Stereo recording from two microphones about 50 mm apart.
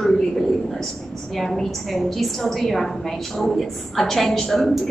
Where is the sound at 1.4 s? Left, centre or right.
Centre.